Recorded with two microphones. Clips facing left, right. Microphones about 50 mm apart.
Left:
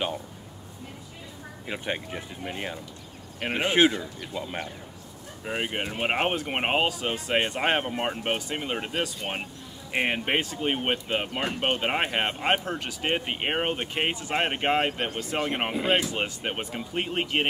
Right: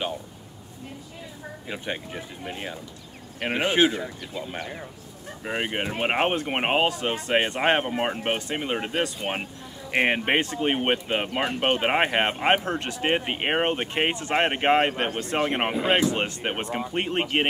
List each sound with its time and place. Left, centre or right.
1.7 s speech: centre
5.4 s speech: centre